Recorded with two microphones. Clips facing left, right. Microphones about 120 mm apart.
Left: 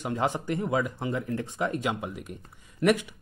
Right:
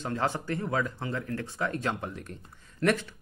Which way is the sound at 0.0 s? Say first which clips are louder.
Left 2 dB; 15° left (ahead or behind).